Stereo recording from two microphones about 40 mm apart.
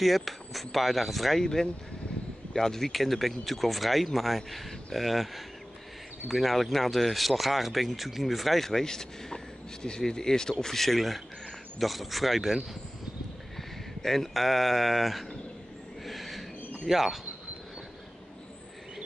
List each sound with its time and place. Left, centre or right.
0.0 s speech: centre
1.4 s speech: centre
6.5 s speech: centre
8.6 s speech: centre
13.6 s speech: centre
16.1 s a sound: centre
16.8 s speech: centre